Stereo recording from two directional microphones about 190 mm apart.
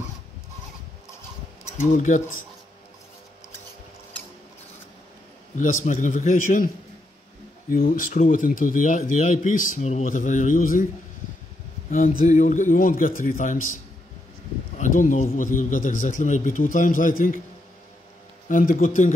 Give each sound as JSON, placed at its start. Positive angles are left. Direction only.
{"t": 1.9, "sound": "speech", "side_deg": 40}
{"t": 5.9, "sound": "a man's voice", "side_deg": 40}
{"t": 7.7, "sound": "a man's voice", "side_deg": 45}
{"t": 11.9, "sound": "a man's voice", "side_deg": 45}
{"t": 15.0, "sound": "a man's voice", "side_deg": 45}
{"t": 18.5, "sound": "a man's voice", "side_deg": 45}